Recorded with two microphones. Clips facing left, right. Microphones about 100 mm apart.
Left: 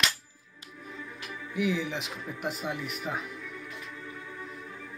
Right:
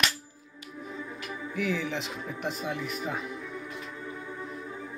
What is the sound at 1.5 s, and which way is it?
Speech, 10° left (ahead or behind).